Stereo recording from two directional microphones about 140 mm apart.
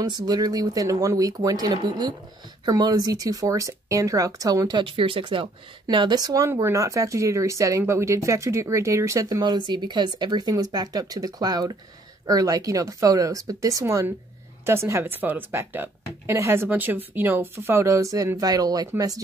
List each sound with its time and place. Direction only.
0.0 s speech: 30° right (ahead or behind)